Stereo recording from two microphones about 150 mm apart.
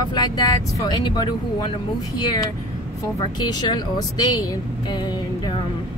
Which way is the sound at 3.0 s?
30° left (ahead or behind).